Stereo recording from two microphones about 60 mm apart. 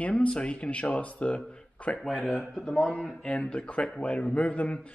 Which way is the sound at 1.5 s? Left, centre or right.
Centre.